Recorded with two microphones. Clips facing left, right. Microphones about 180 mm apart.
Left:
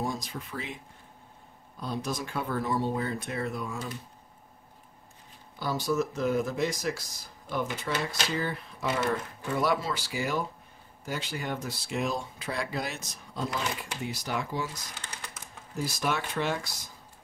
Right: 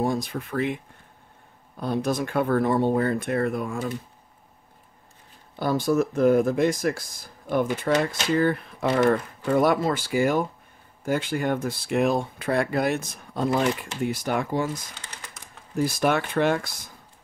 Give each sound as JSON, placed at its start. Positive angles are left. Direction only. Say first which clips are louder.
{"t": 0.0, "sound": "speech", "louder": "right 8 dB", "side_deg": -60}
{"t": 1.8, "sound": "speech", "louder": "right 8 dB", "side_deg": -60}
{"t": 5.6, "sound": "speech", "louder": "right 6 dB", "side_deg": -55}
{"t": 15.8, "sound": "speech", "louder": "right 8 dB", "side_deg": -55}